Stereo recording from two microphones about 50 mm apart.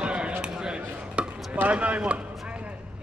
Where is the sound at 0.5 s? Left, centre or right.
Centre.